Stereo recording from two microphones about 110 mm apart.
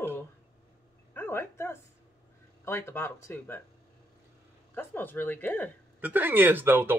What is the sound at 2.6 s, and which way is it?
Speech, 25° left (ahead or behind).